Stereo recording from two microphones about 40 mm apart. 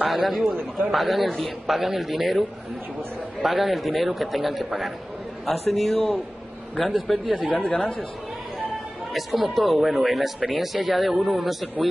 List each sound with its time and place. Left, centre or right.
0.0 s speech: centre
3.4 s speech: centre
7.1 s speech: centre
7.4 s speech: left
7.7 s speech: left
9.1 s speech: centre